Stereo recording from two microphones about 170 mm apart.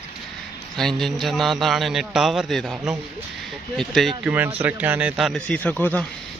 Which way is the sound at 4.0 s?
Centre (ahead or behind).